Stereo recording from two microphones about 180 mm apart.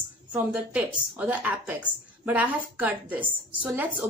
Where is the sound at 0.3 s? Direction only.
10° right (ahead or behind).